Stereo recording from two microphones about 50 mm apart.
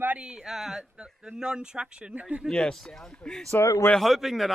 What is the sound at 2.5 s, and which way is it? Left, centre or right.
Speech, centre.